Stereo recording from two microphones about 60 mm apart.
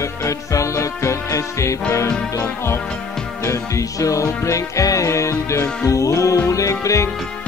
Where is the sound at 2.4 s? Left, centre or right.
Left.